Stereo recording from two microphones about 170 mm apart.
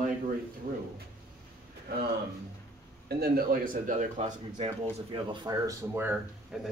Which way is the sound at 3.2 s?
55° right (ahead or behind).